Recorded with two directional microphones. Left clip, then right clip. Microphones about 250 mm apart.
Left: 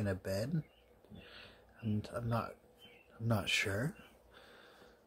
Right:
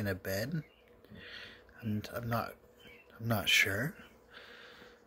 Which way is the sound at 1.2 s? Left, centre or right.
Centre.